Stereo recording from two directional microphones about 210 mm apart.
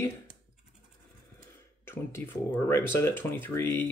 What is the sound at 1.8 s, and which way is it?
Speech, 10° left (ahead or behind).